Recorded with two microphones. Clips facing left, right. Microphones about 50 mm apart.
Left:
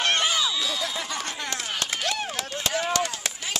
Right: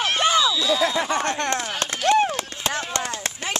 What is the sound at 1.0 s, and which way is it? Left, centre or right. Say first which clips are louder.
Speech: right 9 dB; right.